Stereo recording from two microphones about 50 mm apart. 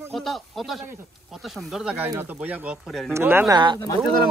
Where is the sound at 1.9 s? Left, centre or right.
Right.